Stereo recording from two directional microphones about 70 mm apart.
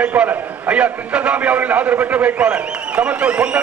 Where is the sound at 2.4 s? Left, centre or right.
Centre.